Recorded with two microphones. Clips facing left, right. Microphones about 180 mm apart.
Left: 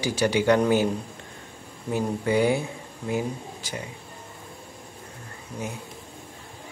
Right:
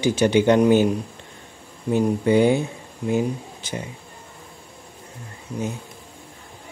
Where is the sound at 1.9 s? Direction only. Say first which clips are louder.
Right 6 dB; 20° right (ahead or behind).